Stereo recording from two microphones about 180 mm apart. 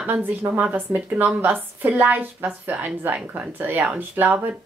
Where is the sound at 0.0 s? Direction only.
10° right (ahead or behind).